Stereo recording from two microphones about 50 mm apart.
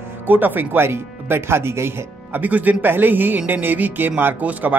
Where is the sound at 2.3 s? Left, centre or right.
Right.